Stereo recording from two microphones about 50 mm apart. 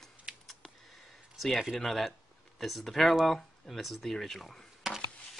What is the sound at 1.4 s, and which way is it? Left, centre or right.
Speech, centre.